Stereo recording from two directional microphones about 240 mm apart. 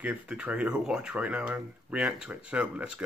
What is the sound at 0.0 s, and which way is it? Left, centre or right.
Speech, centre.